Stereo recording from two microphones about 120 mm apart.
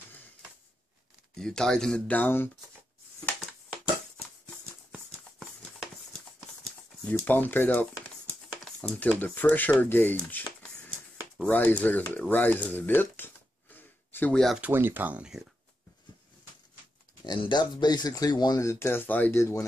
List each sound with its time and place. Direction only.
1.3 s speech: 5° left (ahead or behind)
7.1 s speech: 15° left (ahead or behind)
12.3 s a sound: 15° left (ahead or behind)
14.6 s speech: 20° right (ahead or behind)
17.3 s speech: 40° left (ahead or behind); by 19.6 s 20° left (ahead or behind)